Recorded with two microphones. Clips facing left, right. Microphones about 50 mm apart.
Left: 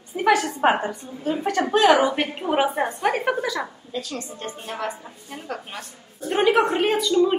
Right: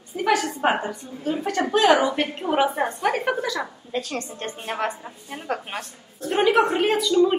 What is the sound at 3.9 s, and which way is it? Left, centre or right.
A woman's voice, right.